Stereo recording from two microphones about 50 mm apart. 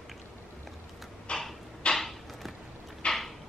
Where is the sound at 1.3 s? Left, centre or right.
Centre.